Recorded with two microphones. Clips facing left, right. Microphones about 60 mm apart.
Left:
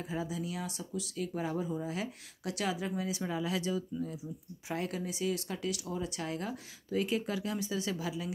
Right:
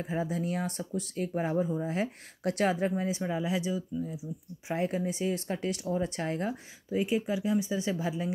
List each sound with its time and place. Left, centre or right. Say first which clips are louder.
0.0 s speech: right 5 dB; right
2.0 s speech: right 6 dB; right
2.9 s speech: right 4 dB; right; by 4.3 s centre
4.6 s speech: right 6 dB; right
6.9 s speech: right 3 dB; centre